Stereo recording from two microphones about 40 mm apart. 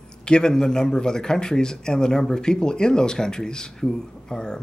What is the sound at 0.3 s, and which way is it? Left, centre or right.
A man's voice, centre.